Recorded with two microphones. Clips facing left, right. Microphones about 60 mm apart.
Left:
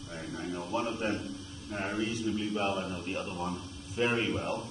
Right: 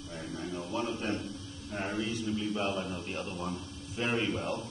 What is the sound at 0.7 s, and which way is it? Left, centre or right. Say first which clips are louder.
A man's voice: left 2 dB; centre.